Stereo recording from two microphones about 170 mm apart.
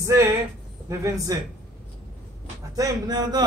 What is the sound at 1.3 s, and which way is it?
Speech, 20° right (ahead or behind).